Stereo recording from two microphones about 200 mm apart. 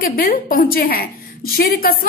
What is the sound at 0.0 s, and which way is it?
A woman's voice, 45° left (ahead or behind).